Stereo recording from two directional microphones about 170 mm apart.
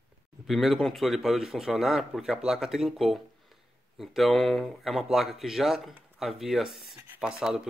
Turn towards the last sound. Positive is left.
turn(degrees=-5)  # may be behind; listen again after turning